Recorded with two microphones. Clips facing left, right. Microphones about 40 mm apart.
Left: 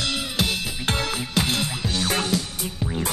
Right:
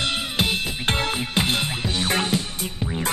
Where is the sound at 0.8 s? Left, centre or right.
Right.